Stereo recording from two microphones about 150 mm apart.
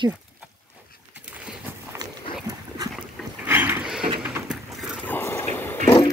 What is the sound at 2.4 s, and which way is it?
Dog, 25° right (ahead or behind).